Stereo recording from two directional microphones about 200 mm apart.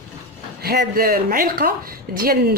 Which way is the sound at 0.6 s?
50° right (ahead or behind).